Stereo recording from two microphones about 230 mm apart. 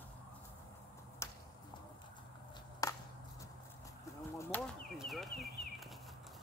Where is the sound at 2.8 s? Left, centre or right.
Centre.